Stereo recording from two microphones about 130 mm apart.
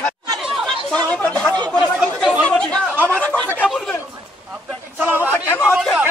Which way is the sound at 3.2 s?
10° left (ahead or behind).